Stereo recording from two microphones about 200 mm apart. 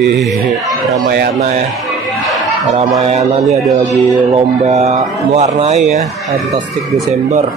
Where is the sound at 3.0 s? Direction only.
30° right (ahead or behind).